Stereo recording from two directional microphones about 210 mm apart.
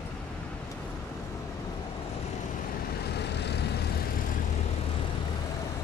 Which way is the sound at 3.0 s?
55° left (ahead or behind).